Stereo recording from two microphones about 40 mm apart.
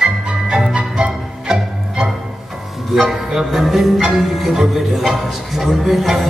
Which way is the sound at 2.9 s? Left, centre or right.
Centre.